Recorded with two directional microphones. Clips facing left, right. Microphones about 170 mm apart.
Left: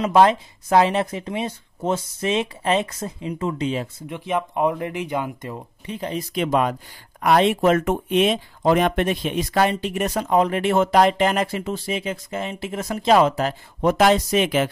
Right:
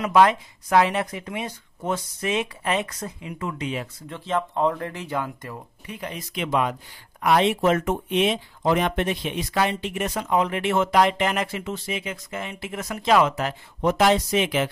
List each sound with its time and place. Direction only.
0.0 s speech: 30° left (ahead or behind)
4.1 s speech: 15° left (ahead or behind); by 14.7 s 45° left (ahead or behind)